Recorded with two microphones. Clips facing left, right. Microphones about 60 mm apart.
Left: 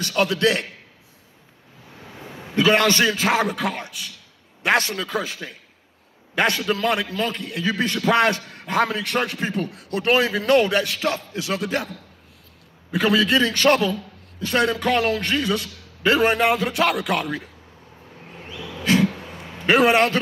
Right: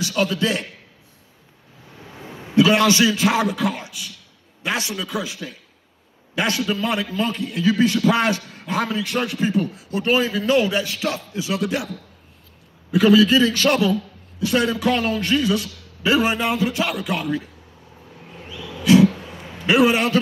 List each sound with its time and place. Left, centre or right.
0.0 s a man's voice: left
2.5 s a man's voice: left
6.7 s a man's voice: left
11.0 s a man's voice: left
12.9 s a man's voice: left
13.6 s a man's voice: left
18.2 s a sound: left
19.0 s a sound: centre
19.6 s a man's voice: left